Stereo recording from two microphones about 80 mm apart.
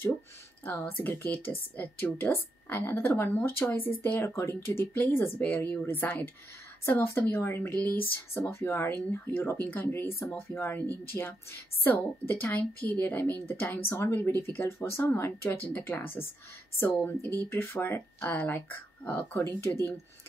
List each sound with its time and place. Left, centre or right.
1.0 s speech: left
6.8 s speech: left
10.1 s speech: left
10.5 s speech: left